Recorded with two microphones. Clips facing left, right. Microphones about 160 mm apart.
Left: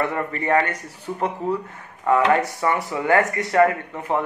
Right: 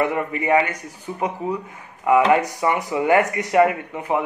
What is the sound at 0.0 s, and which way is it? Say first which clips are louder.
Speech: right 2 dB; 15° right (ahead or behind).